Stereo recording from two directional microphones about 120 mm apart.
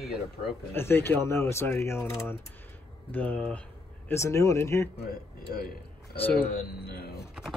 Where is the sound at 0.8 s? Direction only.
20° left (ahead or behind).